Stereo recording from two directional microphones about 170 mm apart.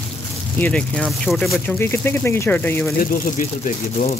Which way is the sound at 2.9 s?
55° left (ahead or behind).